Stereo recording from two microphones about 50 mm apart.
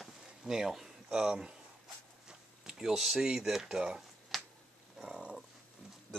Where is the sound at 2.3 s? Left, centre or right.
Centre.